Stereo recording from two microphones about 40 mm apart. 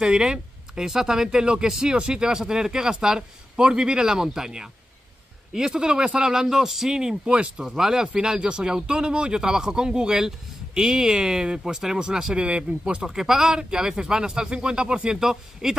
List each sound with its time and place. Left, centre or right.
0.0 s speech: centre
6.4 s speech: centre
7.3 s speech: right
7.6 s speech: centre
13.1 s speech: centre
13.5 s speech: right
15.2 s speech: centre